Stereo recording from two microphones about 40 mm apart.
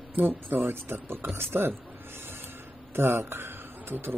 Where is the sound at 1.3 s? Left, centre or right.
Right.